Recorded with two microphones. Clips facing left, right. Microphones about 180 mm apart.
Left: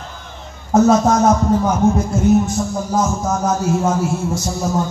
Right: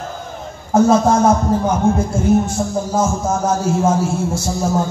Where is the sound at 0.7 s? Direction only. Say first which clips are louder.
Even; 30° right (ahead or behind).